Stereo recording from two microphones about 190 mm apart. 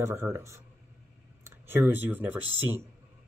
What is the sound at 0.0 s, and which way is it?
Speech, 15° right (ahead or behind).